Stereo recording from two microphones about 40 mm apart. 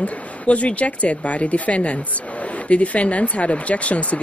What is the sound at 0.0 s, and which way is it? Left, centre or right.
Speech, left.